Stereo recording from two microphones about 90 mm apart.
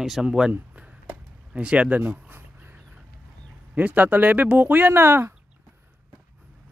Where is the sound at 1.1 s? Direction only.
15° right (ahead or behind).